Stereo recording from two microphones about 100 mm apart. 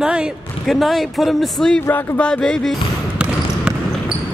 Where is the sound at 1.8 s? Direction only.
20° left (ahead or behind).